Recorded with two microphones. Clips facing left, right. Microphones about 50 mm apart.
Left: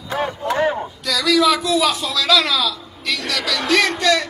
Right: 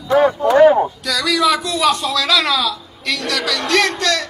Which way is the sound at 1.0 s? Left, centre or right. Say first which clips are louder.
Left 5 dB; centre.